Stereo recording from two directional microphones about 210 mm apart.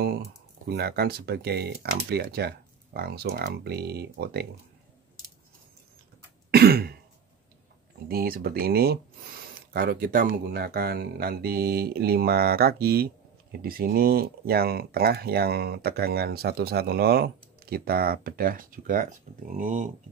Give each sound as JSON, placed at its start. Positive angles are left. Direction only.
{"t": 0.7, "sound": "speech", "side_deg": -50}
{"t": 6.5, "sound": "throat clearing", "side_deg": -45}
{"t": 8.1, "sound": "speech", "side_deg": -45}